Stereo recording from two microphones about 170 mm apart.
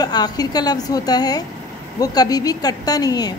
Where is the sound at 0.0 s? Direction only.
25° left (ahead or behind).